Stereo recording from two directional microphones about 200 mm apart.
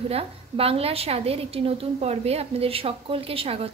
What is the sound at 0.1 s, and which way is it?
A woman's voice, 30° right (ahead or behind).